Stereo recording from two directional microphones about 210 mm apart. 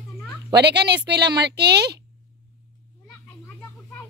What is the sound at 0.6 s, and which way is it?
Speech, 55° right (ahead or behind).